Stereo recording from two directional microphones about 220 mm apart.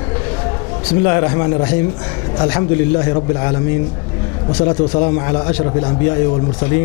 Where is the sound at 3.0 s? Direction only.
20° left (ahead or behind).